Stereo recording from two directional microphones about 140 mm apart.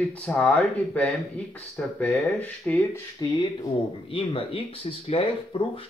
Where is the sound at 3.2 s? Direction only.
30° left (ahead or behind).